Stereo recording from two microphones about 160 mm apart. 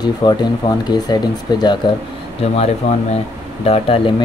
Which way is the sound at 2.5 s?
40° left (ahead or behind).